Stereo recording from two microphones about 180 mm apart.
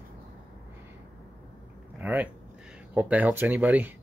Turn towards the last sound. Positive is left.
turn(degrees=-10)  # may be behind; listen again after turning